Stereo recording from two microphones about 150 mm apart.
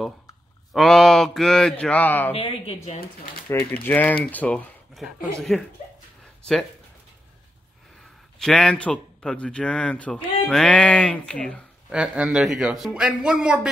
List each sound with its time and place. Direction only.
0.7 s a man's voice: centre (ahead or behind)
2.3 s speech: 40° left (ahead or behind)
3.4 s a man's voice: 15° left (ahead or behind)
8.4 s a man's voice: 5° left (ahead or behind)
11.9 s a man's voice: 5° right (ahead or behind)